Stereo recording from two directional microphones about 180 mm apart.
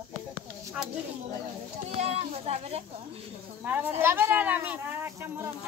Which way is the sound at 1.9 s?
35° right (ahead or behind).